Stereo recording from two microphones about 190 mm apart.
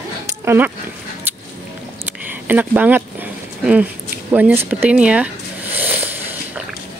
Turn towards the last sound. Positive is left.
turn(degrees=-10)  # may be behind; listen again after turning